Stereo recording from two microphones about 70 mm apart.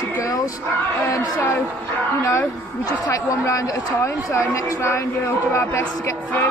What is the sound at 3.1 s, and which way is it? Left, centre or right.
Speech, left.